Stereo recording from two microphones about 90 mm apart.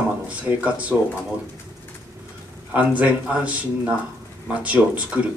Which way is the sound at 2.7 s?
15° right (ahead or behind).